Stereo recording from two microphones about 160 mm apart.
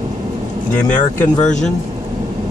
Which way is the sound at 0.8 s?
50° left (ahead or behind).